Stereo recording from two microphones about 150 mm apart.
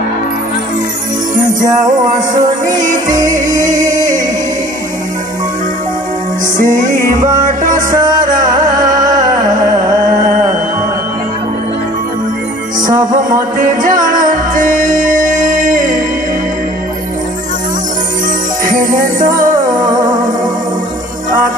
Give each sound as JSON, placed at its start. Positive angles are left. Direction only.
{"t": 1.8, "sound": "music", "side_deg": -25}
{"t": 6.6, "sound": "music", "side_deg": -60}
{"t": 7.2, "sound": "music", "side_deg": -25}
{"t": 7.4, "sound": "music", "side_deg": -60}
{"t": 7.9, "sound": "music", "side_deg": -25}
{"t": 8.2, "sound": "music", "side_deg": -60}
{"t": 8.5, "sound": "music", "side_deg": -25}
{"t": 12.8, "sound": "music", "side_deg": -30}
{"t": 13.3, "sound": "music", "side_deg": -60}
{"t": 18.7, "sound": "music", "side_deg": -65}